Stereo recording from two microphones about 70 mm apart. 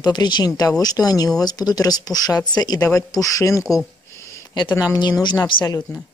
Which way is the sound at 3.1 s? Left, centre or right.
Left.